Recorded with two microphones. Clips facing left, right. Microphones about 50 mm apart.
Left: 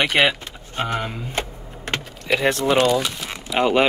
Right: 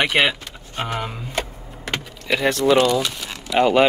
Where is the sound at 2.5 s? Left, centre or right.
Left.